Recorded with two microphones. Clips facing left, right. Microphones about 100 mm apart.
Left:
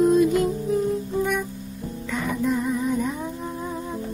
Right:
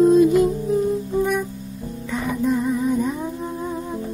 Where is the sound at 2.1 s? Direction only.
10° right (ahead or behind).